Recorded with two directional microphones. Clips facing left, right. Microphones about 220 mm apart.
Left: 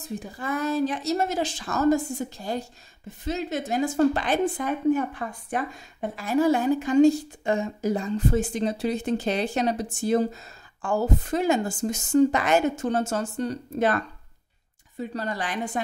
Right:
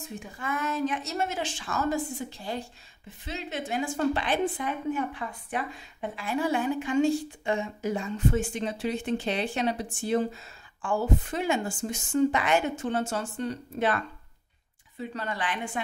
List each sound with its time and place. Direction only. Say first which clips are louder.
0.2 s a woman's voice: left 3 dB; 35° left (ahead or behind)